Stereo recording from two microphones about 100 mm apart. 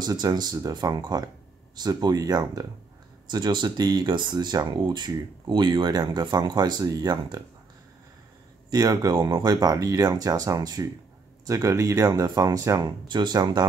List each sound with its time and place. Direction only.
0.0 s speech: 40° right (ahead or behind)
8.6 s speech: 40° right (ahead or behind)